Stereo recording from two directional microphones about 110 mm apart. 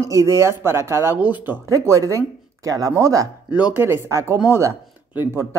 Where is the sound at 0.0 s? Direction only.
30° right (ahead or behind).